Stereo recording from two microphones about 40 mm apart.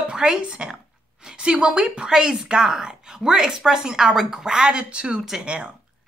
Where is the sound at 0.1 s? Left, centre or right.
Centre.